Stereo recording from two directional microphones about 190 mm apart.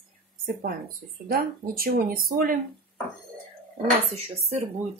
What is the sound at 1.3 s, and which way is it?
Speech, 50° right (ahead or behind).